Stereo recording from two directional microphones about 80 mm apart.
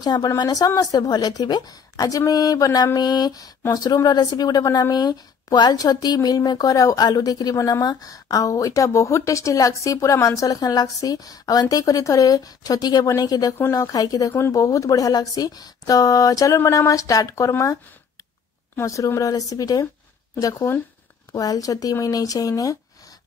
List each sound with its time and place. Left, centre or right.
0.0 s a woman's voice: left
18.8 s a woman's voice: left